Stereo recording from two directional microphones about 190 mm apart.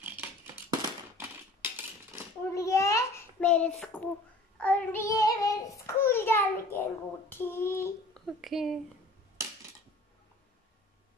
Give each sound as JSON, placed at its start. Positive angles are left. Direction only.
{"t": 0.0, "sound": "a sound", "side_deg": -10}
{"t": 2.5, "sound": "child singing", "side_deg": 15}
{"t": 3.8, "sound": "a child's voice", "side_deg": 5}
{"t": 8.3, "sound": "speech", "side_deg": 0}